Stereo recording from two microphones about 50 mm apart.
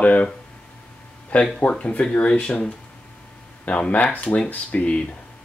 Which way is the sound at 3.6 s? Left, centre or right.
Left.